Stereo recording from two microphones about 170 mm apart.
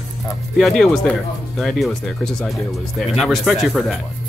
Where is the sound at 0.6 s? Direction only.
Centre (ahead or behind).